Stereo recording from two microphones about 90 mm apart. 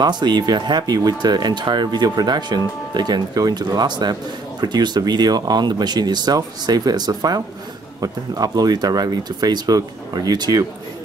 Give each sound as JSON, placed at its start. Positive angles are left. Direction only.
{"t": 0.0, "sound": "speech", "side_deg": -55}